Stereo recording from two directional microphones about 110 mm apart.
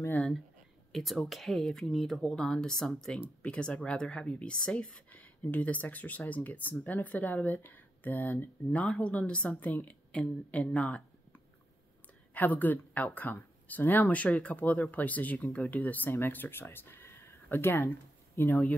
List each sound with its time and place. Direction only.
0.9 s speech: centre (ahead or behind); by 18.6 s 20° left (ahead or behind)